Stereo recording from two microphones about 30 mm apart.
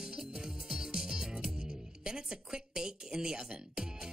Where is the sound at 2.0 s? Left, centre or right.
Right.